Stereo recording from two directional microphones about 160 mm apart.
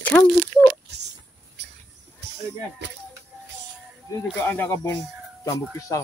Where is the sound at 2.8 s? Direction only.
90° right.